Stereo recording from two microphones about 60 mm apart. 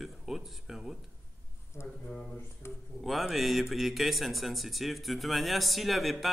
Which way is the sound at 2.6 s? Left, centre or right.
Left.